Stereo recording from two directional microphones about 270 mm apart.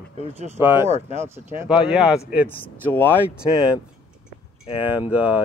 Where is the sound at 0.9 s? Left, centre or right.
Right.